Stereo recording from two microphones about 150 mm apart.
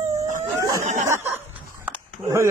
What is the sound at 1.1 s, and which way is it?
Snicker, 15° right (ahead or behind).